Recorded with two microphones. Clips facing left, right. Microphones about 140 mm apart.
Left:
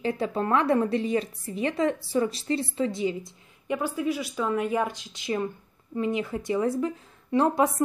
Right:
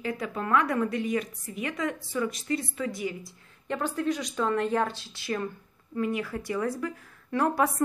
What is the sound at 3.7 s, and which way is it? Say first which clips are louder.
A woman's voice: left 1 dB; 10° left (ahead or behind).